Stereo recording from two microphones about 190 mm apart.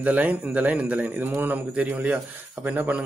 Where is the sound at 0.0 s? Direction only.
10° right (ahead or behind).